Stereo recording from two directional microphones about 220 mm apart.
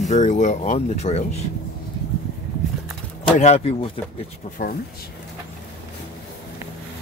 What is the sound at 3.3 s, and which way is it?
Speech, 30° left (ahead or behind).